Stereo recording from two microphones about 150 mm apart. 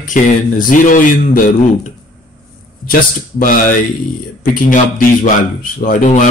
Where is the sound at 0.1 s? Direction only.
65° left (ahead or behind).